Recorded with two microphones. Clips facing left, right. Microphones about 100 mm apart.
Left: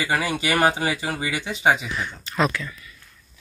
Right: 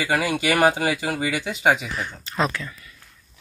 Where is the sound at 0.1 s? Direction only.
10° right (ahead or behind).